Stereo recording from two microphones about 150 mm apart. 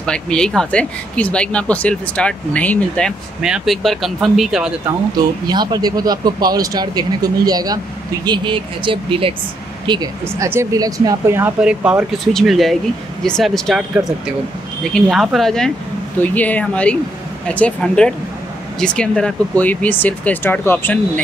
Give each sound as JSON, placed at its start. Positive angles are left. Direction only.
{"t": 0.0, "sound": "speech", "side_deg": 5}
{"t": 3.4, "sound": "speech", "side_deg": -5}
{"t": 5.5, "sound": "speech", "side_deg": -30}
{"t": 10.2, "sound": "speech", "side_deg": -15}